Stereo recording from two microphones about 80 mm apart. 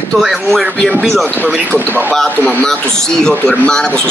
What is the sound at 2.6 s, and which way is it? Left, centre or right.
A man's voice, centre.